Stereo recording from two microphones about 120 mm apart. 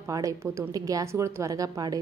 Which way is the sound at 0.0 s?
30° right (ahead or behind).